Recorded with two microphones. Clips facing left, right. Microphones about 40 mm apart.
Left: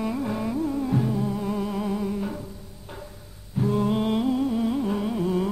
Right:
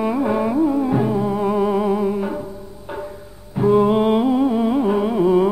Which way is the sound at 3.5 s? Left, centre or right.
Right.